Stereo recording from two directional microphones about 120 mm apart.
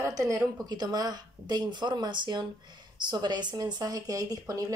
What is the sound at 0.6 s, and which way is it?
Speech, 35° right (ahead or behind).